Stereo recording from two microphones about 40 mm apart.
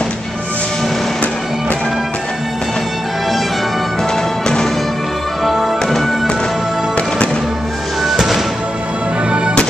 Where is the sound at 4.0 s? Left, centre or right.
Centre.